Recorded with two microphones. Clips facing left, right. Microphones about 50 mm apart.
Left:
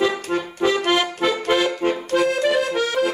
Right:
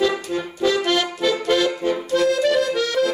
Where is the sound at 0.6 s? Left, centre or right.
Left.